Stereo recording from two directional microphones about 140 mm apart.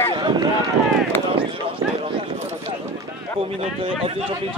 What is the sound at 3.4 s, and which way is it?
Speech, 45° right (ahead or behind).